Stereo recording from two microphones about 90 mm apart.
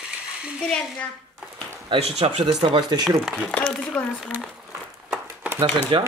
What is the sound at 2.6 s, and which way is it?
Speech, 65° right (ahead or behind).